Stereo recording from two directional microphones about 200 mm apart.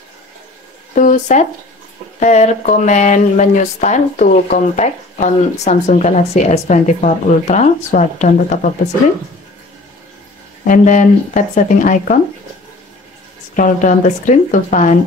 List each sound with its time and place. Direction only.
0.9 s speech: 40° left (ahead or behind)
10.7 s speech: 40° left (ahead or behind)
13.6 s speech: 40° left (ahead or behind)